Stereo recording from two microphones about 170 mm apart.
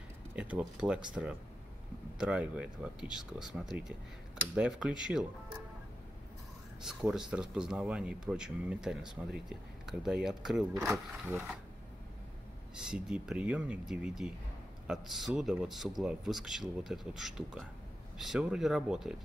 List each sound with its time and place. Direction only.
0.4 s speech: 5° right (ahead or behind)
6.8 s speech: centre (ahead or behind)
12.7 s speech: 5° right (ahead or behind)